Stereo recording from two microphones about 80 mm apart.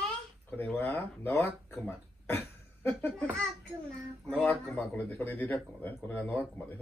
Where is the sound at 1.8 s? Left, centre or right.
Left.